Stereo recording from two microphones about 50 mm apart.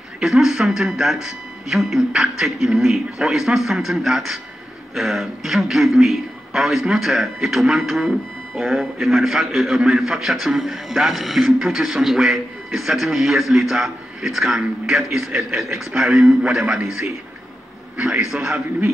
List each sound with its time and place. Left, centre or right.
0.2 s a man's voice: centre
18.3 s a man's voice: centre